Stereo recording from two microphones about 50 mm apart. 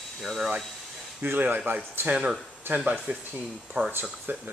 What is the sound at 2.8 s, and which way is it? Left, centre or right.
Speech, right.